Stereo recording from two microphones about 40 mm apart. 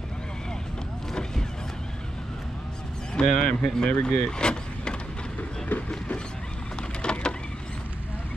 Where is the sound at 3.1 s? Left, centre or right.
Left.